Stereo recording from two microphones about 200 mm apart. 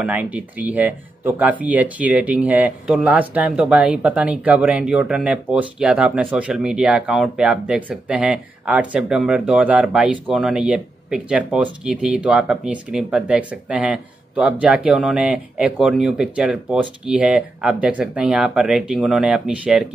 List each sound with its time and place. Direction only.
0.0 s speech: 5° right (ahead or behind)